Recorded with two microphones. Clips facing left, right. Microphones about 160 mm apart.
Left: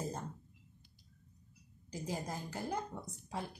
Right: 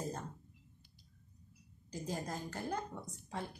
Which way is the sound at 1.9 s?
10° left (ahead or behind).